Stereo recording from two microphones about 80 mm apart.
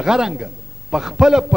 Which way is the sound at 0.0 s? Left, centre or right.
Centre.